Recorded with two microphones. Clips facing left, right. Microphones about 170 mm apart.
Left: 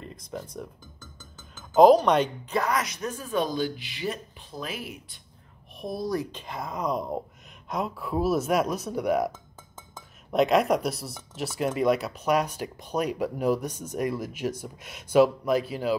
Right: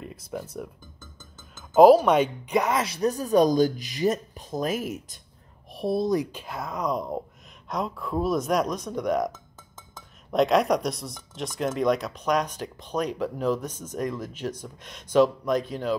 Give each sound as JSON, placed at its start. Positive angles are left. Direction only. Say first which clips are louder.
{"t": 0.0, "sound": "speech", "louder": "right 2 dB", "side_deg": -5}
{"t": 1.8, "sound": "speech", "louder": "right 2 dB", "side_deg": -5}
{"t": 2.6, "sound": "speech", "louder": "right 4 dB", "side_deg": -25}
{"t": 5.8, "sound": "speech", "louder": "right 5 dB", "side_deg": -25}
{"t": 6.3, "sound": "speech", "louder": "right 1 dB", "side_deg": -5}
{"t": 10.3, "sound": "speech", "louder": "right 1 dB", "side_deg": 0}